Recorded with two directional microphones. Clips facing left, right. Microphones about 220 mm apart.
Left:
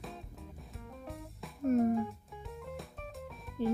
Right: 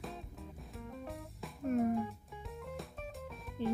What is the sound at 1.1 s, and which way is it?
Music, centre (ahead or behind).